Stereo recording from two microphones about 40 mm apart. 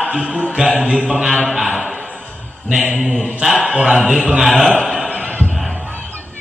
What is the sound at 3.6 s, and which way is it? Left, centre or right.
Speech, centre.